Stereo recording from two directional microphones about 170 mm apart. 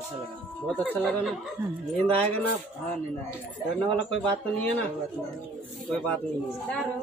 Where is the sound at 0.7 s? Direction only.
Centre (ahead or behind).